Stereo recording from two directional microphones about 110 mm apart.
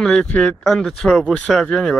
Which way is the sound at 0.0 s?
5° left (ahead or behind).